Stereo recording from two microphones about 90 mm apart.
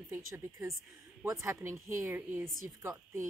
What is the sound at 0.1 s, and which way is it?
A woman's voice, 30° right (ahead or behind).